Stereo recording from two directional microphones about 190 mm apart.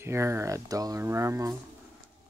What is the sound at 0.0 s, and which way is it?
Speech, 15° right (ahead or behind).